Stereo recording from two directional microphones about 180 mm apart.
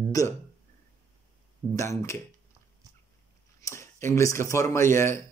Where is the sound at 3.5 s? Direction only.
15° left (ahead or behind).